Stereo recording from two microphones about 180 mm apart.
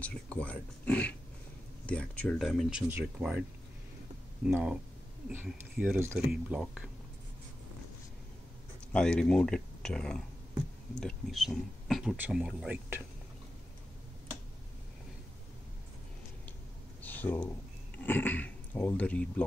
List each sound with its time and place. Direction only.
0.0 s speech: 5° left (ahead or behind)
4.5 s speech: 5° right (ahead or behind)
8.9 s speech: 5° left (ahead or behind)
17.0 s a sound: 10° left (ahead or behind)
17.9 s speech: 10° left (ahead or behind)